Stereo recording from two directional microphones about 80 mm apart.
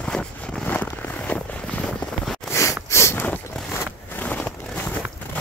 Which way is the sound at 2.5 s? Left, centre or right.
Left.